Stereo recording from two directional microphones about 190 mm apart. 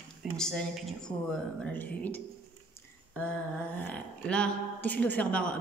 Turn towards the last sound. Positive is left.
turn(degrees=5)  # may be behind; listen again after turning